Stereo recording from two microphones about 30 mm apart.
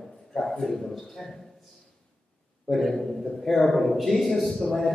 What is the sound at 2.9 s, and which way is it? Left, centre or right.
A man's voice, centre.